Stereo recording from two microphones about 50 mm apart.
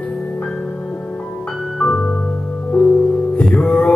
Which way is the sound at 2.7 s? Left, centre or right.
Left.